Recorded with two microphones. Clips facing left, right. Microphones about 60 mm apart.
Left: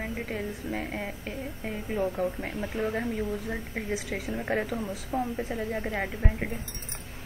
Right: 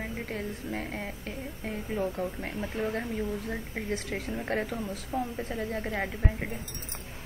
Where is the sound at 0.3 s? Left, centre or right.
Centre.